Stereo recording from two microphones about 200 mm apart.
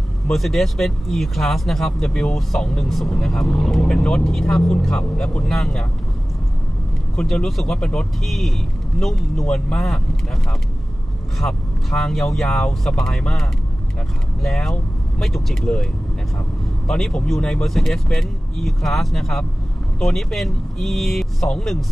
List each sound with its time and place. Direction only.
0.3 s speech: centre (ahead or behind)
7.2 s speech: 5° left (ahead or behind)
11.3 s speech: centre (ahead or behind)